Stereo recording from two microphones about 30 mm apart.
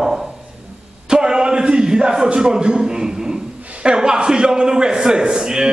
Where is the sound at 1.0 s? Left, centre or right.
Right.